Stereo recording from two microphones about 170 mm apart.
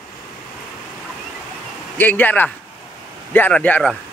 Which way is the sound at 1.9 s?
10° left (ahead or behind).